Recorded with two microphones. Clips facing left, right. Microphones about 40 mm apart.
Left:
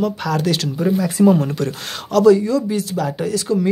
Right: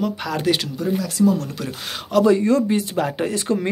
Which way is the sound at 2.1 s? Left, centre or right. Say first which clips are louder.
Left 4 dB; right.